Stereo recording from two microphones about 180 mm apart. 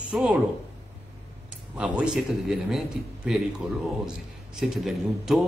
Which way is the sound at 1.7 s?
5° right (ahead or behind).